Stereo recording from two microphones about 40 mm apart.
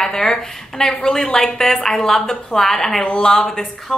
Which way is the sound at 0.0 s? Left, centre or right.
Centre.